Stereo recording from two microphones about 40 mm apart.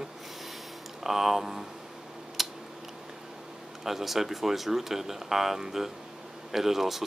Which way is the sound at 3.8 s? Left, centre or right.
Centre.